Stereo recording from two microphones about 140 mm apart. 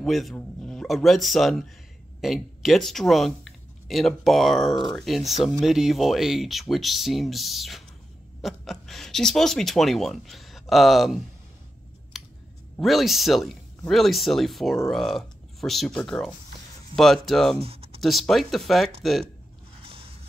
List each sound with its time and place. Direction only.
0.0 s speech: centre (ahead or behind)
12.1 s scissors: centre (ahead or behind)
12.7 s speech: centre (ahead or behind)
17.6 s a sound: 45° right (ahead or behind)
18.0 s speech: centre (ahead or behind)
19.8 s a sound: 40° right (ahead or behind)